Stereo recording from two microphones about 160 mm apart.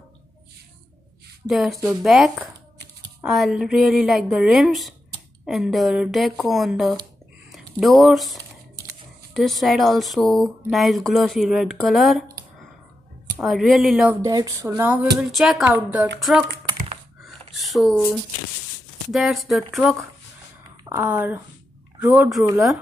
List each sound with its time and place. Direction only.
1.5 s speech: centre (ahead or behind)
13.4 s speech: centre (ahead or behind)
14.2 s speech: 20° right (ahead or behind)
14.8 s speech: 10° right (ahead or behind)
17.2 s a sound: centre (ahead or behind)
19.1 s speech: centre (ahead or behind)
20.9 s speech: 10° right (ahead or behind)